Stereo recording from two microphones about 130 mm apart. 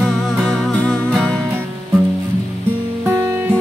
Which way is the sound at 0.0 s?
Centre (ahead or behind).